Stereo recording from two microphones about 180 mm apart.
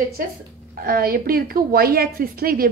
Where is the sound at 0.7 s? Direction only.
55° right (ahead or behind).